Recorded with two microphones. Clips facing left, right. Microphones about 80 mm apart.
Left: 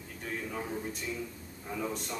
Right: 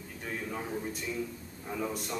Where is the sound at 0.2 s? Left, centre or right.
Centre.